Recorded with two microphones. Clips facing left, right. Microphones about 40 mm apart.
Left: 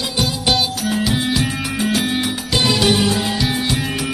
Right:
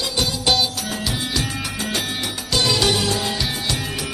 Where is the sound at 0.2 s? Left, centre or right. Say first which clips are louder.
Left 2 dB; centre.